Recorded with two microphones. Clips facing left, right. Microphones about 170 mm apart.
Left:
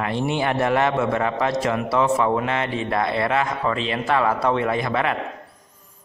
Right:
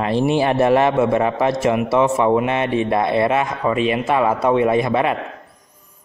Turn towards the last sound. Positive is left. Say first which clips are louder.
# right 5 dB
turn(degrees=-20)  # may be behind; listen again after turning